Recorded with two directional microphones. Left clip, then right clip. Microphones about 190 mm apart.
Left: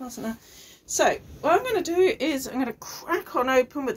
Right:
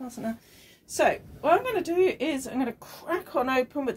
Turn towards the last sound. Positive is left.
turn(degrees=-45)  # may be behind; listen again after turning